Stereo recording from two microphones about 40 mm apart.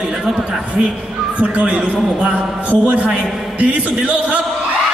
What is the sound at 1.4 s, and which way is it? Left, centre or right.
A man's voice, right.